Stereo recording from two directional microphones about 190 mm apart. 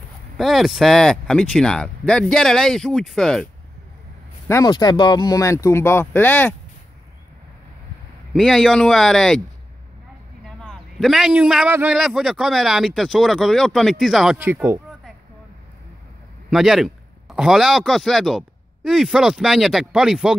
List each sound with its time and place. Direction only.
0.4 s speech: centre (ahead or behind)
4.5 s speech: 20° left (ahead or behind)
8.3 s speech: centre (ahead or behind)
10.4 s a man's voice: centre (ahead or behind)
16.4 s speech: centre (ahead or behind)